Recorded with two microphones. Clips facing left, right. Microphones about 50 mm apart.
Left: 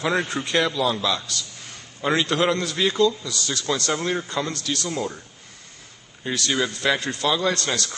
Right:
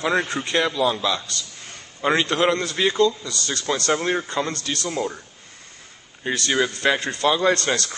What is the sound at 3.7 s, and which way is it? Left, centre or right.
Speech, centre.